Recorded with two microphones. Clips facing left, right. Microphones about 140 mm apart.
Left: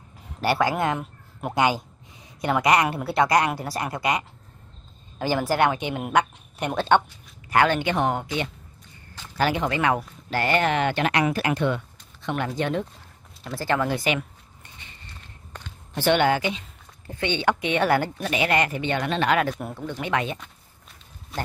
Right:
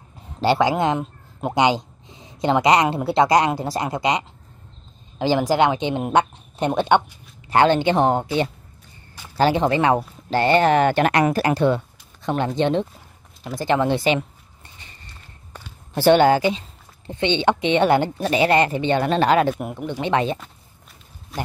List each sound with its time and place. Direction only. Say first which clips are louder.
0.4 s a woman's voice: right 4 dB; 25° right (ahead or behind)
7.4 s a woman's voice: right 5 dB; 30° right (ahead or behind)
15.5 s a sound: even; 10° right (ahead or behind)
15.9 s speech: right 6 dB; 35° right (ahead or behind)
19.6 s speech: right 4 dB; 15° right (ahead or behind)
20.1 s a woman's voice: right 6 dB; 30° right (ahead or behind)
21.3 s a man's voice: right 2 dB; centre (ahead or behind)